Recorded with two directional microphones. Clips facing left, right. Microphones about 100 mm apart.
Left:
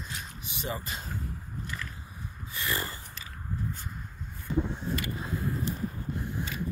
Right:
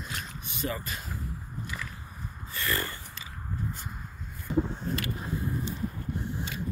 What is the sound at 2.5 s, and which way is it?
Snort, 20° left (ahead or behind).